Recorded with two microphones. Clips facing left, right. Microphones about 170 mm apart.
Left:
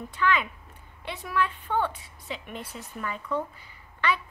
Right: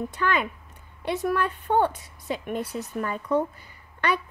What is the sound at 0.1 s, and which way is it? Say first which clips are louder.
A woman's voice: left 5 dB; 45° right (ahead or behind).